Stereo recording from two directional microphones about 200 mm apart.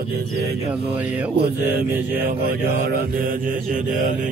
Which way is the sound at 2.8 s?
45° right (ahead or behind).